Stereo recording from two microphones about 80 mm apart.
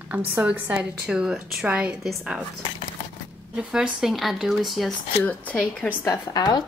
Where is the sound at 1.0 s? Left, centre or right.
Centre.